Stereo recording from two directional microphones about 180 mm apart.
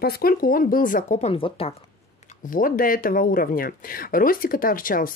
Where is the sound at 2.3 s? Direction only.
50° left (ahead or behind).